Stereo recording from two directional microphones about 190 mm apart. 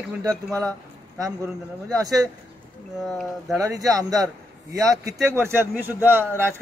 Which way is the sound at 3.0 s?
Centre (ahead or behind).